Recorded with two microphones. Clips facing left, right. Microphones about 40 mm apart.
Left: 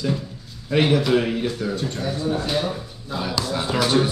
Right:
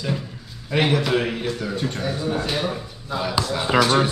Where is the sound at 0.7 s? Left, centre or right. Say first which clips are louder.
Left 2 dB; centre.